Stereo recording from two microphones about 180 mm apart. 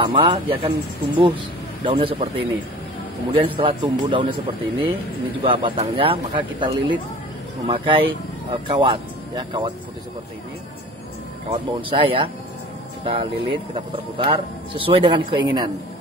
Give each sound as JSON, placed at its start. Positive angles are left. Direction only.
{"t": 0.0, "sound": "a man's voice", "side_deg": -30}
{"t": 11.5, "sound": "speech", "side_deg": -30}